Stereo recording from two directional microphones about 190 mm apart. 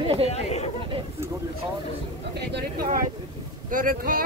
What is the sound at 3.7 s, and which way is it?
Speech, 45° right (ahead or behind).